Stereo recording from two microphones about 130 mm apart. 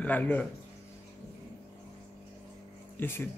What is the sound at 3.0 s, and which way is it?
Speech, 15° left (ahead or behind).